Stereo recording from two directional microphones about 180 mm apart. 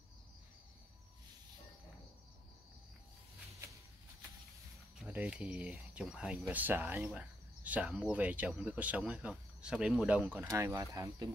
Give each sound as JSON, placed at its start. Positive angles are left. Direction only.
{"t": 5.0, "sound": "speech", "side_deg": -5}